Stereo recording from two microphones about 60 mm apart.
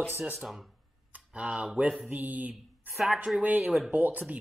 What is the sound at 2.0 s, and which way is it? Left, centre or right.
Speech, right.